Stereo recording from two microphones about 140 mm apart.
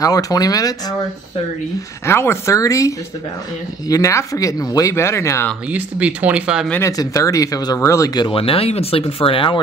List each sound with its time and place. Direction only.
0.0 s speech: 25° left (ahead or behind)
2.0 s speech: 20° left (ahead or behind)
3.9 s speech: 20° left (ahead or behind)
5.7 s speech: 10° right (ahead or behind)
6.7 s speech: 20° left (ahead or behind); by 9.6 s 40° left (ahead or behind)